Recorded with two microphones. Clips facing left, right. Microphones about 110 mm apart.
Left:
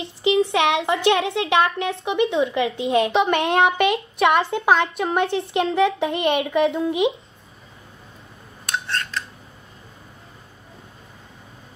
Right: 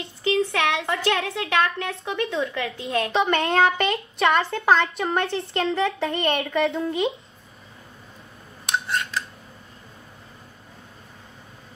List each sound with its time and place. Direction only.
0.0 s speech: 20° left (ahead or behind)
3.1 s a woman's voice: 5° left (ahead or behind)
8.6 s a sound: 10° right (ahead or behind)